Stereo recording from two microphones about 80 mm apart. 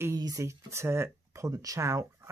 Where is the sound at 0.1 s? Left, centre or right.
Right.